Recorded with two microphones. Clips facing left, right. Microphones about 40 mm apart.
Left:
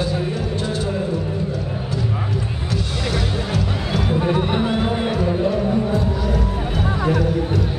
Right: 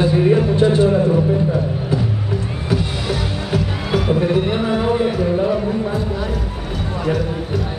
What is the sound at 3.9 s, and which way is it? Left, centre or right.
Music, centre.